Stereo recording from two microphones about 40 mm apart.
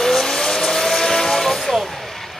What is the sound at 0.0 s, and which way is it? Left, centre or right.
Vehicle, centre.